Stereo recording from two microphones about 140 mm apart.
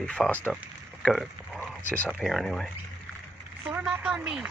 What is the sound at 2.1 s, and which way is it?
Speech, centre (ahead or behind).